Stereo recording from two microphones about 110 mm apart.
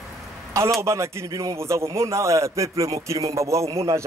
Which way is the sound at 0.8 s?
25° right (ahead or behind).